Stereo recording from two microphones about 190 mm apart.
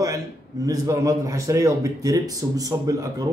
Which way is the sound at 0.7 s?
15° right (ahead or behind).